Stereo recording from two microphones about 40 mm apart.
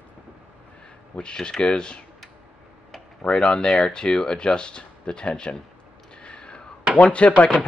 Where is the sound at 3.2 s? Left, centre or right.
Left.